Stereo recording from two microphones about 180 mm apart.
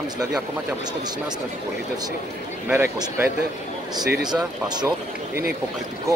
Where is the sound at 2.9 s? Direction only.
15° right (ahead or behind).